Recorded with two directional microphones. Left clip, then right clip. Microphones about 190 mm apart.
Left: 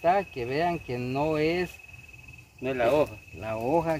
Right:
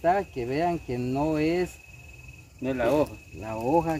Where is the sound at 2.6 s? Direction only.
Centre (ahead or behind).